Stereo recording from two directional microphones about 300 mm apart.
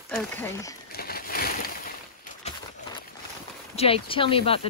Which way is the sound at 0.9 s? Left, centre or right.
Left.